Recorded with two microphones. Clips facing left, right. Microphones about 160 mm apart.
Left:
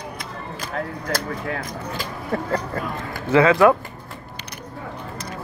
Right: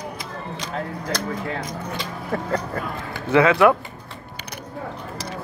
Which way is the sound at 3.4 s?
25° left (ahead or behind).